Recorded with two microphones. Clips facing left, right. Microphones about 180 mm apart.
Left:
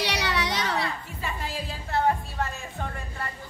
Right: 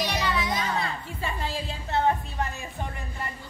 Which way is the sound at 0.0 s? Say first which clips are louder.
Even; 75° left (ahead or behind).